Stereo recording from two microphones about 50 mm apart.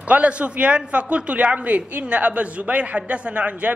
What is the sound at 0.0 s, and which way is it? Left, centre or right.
A man's voice, right.